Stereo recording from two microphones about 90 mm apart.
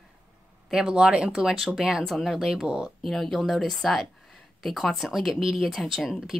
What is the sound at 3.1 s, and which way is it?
Speech, centre (ahead or behind).